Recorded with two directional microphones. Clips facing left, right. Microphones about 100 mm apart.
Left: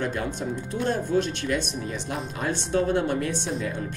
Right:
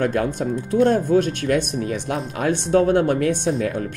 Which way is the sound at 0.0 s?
55° right (ahead or behind).